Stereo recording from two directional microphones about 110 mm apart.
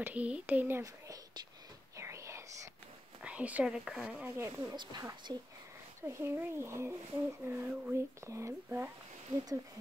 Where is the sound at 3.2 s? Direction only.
15° right (ahead or behind).